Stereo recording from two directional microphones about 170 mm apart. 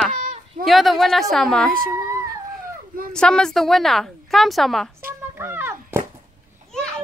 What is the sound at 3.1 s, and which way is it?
A woman's voice, 5° left (ahead or behind).